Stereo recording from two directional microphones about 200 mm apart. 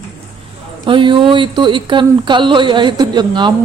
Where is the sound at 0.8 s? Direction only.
25° right (ahead or behind).